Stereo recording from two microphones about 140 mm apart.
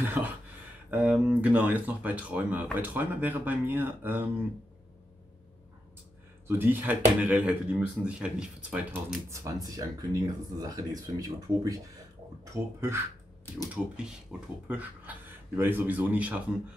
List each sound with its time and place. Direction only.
0.0 s a sound: 15° right (ahead or behind)
0.8 s speech: 10° right (ahead or behind)
6.4 s speech: 15° right (ahead or behind)
9.3 s speech: 25° right (ahead or behind)
14.3 s speech: 5° right (ahead or behind)